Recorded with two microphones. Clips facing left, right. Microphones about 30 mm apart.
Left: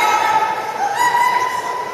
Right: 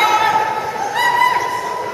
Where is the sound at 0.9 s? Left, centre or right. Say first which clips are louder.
Right 1 dB; right.